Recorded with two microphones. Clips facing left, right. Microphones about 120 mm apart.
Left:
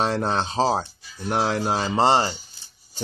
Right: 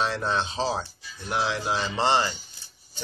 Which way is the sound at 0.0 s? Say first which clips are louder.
Left 3 dB; 45° left (ahead or behind).